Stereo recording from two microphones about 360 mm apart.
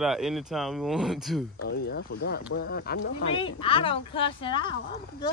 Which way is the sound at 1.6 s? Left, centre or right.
Left.